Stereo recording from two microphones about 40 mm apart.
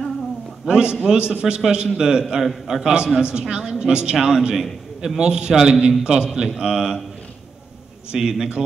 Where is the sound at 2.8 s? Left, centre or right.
Right.